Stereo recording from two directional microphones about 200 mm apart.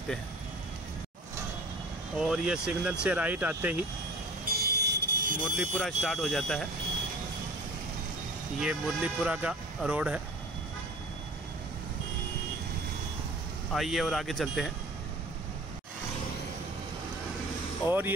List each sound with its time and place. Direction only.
2.1 s speech: 5° right (ahead or behind)
4.5 s vehicle: 50° right (ahead or behind)
5.6 s speech: centre (ahead or behind)
8.5 s speech: 5° right (ahead or behind)
13.7 s speech: centre (ahead or behind)
17.8 s speech: 20° left (ahead or behind)